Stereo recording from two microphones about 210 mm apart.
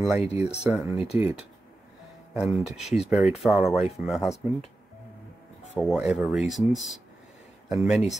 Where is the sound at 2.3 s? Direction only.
5° right (ahead or behind).